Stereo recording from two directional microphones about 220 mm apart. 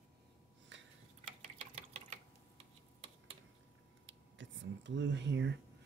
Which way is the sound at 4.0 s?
55° right (ahead or behind).